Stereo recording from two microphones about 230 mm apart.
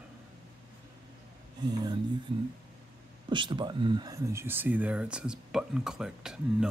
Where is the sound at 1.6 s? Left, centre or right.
Centre.